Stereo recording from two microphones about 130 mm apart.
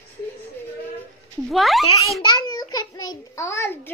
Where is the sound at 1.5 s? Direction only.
Centre (ahead or behind).